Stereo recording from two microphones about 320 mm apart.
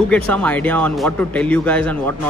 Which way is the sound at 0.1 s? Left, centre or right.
Centre.